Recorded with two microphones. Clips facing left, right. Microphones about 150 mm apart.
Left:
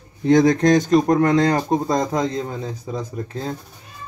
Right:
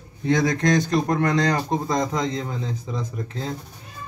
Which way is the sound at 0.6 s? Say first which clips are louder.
Left 5 dB; 25° left (ahead or behind).